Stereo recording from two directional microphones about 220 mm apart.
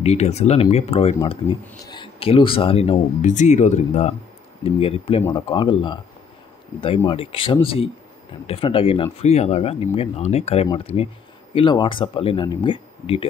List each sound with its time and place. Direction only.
0.0 s speech: 30° left (ahead or behind)
7.1 s speech: 25° left (ahead or behind)